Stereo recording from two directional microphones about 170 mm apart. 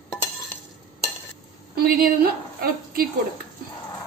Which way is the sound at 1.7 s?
65° right (ahead or behind).